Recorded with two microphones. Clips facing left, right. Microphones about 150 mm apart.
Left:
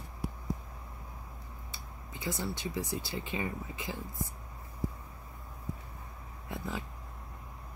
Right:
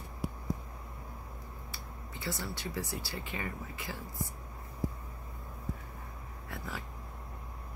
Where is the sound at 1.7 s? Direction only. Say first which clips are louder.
Left 1 dB; 15° left (ahead or behind).